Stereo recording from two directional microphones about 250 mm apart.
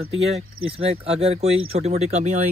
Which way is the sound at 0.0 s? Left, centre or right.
Right.